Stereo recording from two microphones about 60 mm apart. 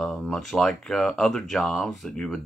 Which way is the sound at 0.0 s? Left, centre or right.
Centre.